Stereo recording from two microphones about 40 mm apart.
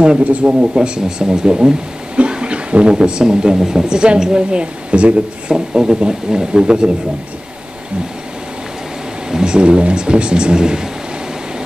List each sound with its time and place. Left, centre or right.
0.2 s a man's voice: right
0.5 s speech: right
5.5 s speech: centre
9.3 s speech: centre